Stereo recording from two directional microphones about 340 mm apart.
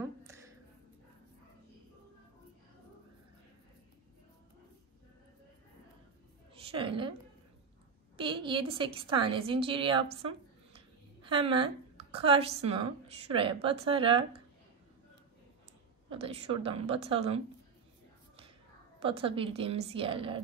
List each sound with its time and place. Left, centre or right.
0.0 s a sound: centre
6.6 s a sound: centre
8.2 s a woman's voice: centre
11.2 s a woman's voice: centre
16.1 s a woman's voice: centre
18.9 s a woman's voice: centre